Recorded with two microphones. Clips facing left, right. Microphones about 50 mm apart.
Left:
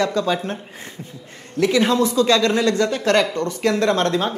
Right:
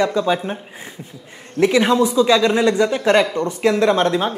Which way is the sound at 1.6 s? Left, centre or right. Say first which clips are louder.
Right 2 dB; right.